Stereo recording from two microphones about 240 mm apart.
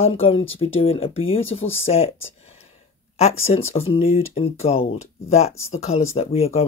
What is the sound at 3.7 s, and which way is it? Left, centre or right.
Speech, left.